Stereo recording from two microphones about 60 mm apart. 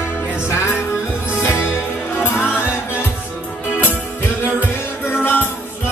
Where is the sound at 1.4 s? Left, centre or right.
Left.